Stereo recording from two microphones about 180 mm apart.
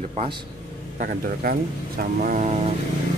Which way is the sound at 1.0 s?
50° right (ahead or behind).